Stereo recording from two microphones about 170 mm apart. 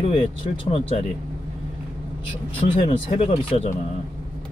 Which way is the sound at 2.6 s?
35° left (ahead or behind).